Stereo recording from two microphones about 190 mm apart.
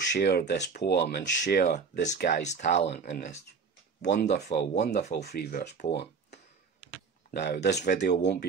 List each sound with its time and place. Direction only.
0.1 s speech: 60° left (ahead or behind)
4.8 s speech: 40° left (ahead or behind)
5.2 s speech: 55° left (ahead or behind)